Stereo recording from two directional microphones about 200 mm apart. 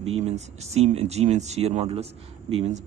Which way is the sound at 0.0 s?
30° right (ahead or behind).